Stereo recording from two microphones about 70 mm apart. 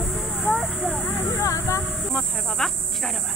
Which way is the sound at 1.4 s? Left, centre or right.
Left.